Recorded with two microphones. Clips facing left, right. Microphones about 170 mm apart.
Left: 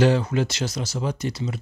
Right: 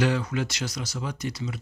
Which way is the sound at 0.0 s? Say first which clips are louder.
Left 6 dB; 30° left (ahead or behind).